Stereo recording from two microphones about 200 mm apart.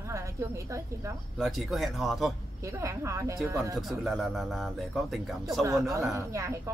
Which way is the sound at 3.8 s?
Centre (ahead or behind).